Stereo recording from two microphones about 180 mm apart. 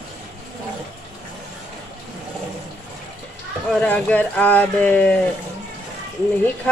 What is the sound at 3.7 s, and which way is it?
Speech, 5° left (ahead or behind).